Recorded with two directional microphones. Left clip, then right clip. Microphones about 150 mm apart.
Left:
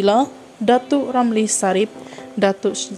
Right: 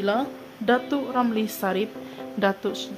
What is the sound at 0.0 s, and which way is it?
A woman's voice, 45° left (ahead or behind).